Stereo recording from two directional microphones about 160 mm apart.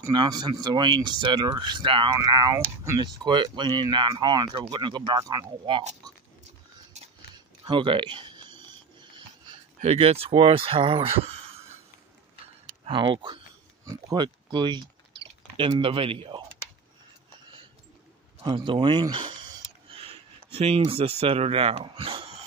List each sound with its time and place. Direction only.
0.1 s speech: 25° right (ahead or behind)
7.6 s a sound: 30° right (ahead or behind)
9.8 s speech: 40° right (ahead or behind)
12.8 s speech: 30° right (ahead or behind)
18.4 s a sound: 30° right (ahead or behind)
21.2 s speech: 40° right (ahead or behind)